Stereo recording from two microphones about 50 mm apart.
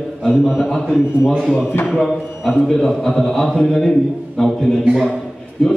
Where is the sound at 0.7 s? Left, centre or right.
Centre.